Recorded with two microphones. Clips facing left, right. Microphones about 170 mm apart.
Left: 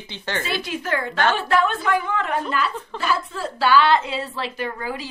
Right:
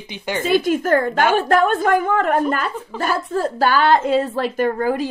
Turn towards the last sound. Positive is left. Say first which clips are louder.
# right 9 dB
turn(degrees=-50)  # may be behind; listen again after turning